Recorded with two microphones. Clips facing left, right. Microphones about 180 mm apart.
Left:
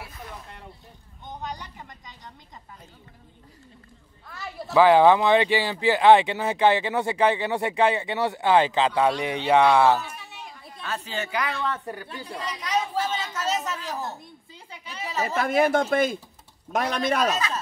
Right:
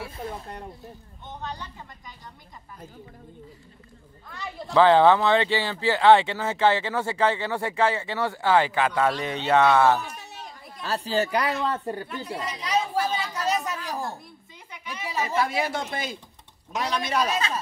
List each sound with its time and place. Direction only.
0.0 s a sound: 30° right (ahead or behind)
1.2 s speech: 15° left (ahead or behind)
4.3 s speech: 5° left (ahead or behind)
4.7 s speech: 15° left (ahead or behind)
10.8 s speech: 35° right (ahead or behind)
13.0 s a woman's voice: 15° right (ahead or behind)
14.2 s a woman's voice: 30° left (ahead or behind)
15.3 s speech: 55° left (ahead or behind)